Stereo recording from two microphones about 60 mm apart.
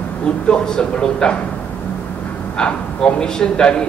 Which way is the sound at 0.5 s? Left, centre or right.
Centre.